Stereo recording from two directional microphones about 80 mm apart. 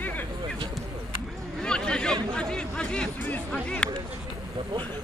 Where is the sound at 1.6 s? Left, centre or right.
Centre.